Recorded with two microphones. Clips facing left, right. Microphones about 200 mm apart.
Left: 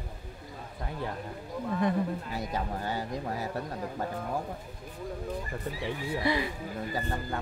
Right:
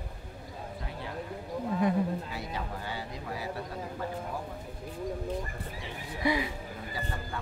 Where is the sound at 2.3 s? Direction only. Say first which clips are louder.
Left 4 dB; 45° left (ahead or behind).